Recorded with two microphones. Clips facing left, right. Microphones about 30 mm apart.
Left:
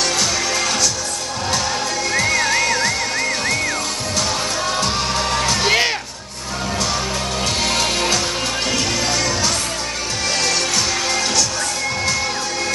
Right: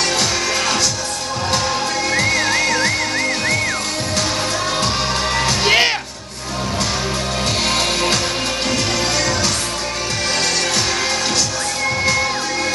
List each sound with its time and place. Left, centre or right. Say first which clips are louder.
0.0 s music: right 1 dB; right
2.0 s music: even; centre
5.3 s music: right 2 dB; centre
9.1 s music: right 1 dB; right